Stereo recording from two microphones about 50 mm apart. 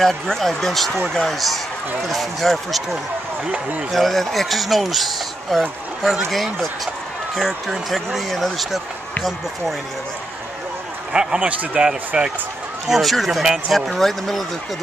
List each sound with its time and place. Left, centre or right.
0.0 s speech: centre
11.1 s a man's voice: centre
12.8 s speech: centre